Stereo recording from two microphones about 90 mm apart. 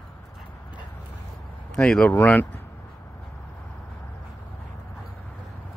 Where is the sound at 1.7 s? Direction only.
10° left (ahead or behind).